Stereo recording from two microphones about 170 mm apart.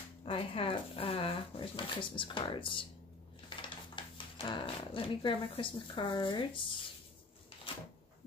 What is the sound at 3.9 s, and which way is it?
Speech, 30° left (ahead or behind).